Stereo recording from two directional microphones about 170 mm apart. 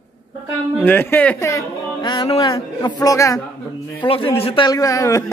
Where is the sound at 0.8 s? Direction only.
10° left (ahead or behind).